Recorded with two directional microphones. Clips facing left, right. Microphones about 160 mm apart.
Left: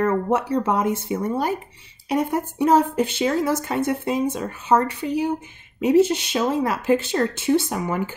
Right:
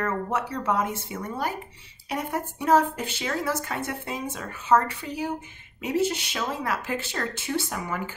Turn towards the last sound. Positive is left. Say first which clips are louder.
# left 9 dB
turn(degrees=25)  # may be behind; listen again after turning